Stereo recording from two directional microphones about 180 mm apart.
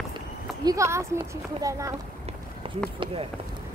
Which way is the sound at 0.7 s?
15° right (ahead or behind).